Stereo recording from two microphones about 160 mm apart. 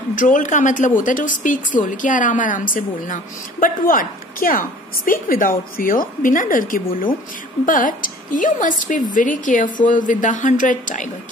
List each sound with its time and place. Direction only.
0.1 s a woman's voice: 55° left (ahead or behind)